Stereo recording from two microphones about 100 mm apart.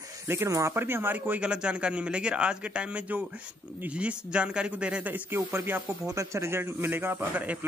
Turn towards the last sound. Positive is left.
turn(degrees=-15)  # may be behind; listen again after turning